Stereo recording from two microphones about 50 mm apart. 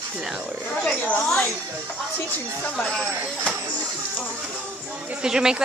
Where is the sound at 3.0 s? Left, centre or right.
Right.